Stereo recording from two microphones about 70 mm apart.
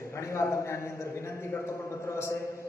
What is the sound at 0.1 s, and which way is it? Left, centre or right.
A man's voice, left.